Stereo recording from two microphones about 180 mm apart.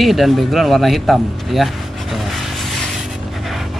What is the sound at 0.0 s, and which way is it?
Speech, centre (ahead or behind).